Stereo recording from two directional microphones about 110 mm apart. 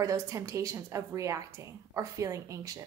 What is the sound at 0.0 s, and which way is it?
A woman's voice, 30° right (ahead or behind).